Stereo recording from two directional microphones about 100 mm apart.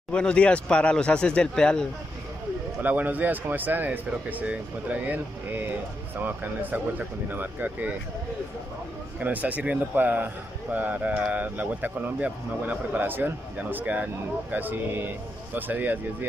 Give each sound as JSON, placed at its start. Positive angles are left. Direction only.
{"t": 0.1, "sound": "speech", "side_deg": 10}
{"t": 2.8, "sound": "speech", "side_deg": -15}
{"t": 9.2, "sound": "speech", "side_deg": -15}